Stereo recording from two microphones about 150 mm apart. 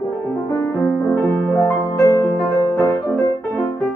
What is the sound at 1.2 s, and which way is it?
Music, 10° left (ahead or behind).